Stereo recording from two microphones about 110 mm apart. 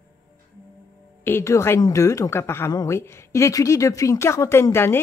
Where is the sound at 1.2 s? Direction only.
25° left (ahead or behind).